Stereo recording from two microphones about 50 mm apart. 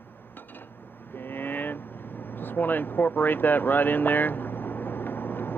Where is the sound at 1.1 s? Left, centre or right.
Left.